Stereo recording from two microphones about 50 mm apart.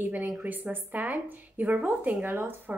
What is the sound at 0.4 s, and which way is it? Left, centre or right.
Speech, right.